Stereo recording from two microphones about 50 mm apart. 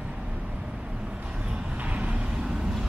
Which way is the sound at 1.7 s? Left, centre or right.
Right.